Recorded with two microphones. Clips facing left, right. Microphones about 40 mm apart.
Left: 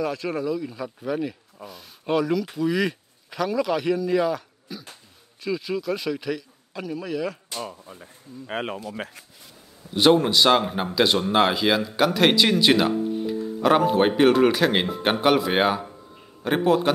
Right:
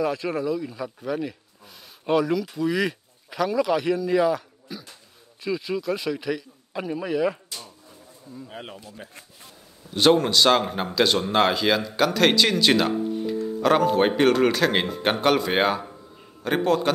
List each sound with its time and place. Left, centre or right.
0.0 s speech: centre
6.7 s speech: centre
8.5 s speech: left
9.8 s speech: centre